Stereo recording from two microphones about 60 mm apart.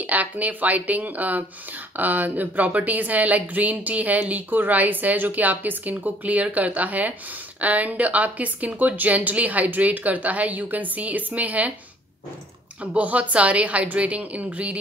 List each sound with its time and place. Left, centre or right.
0.0 s speech: right
12.8 s speech: right